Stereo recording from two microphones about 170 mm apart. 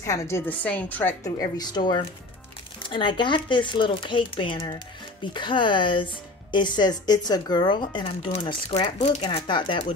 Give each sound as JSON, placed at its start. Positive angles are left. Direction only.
{"t": 0.0, "sound": "a woman's voice", "side_deg": 15}
{"t": 1.2, "sound": "speech", "side_deg": 25}
{"t": 9.2, "sound": "speech", "side_deg": 30}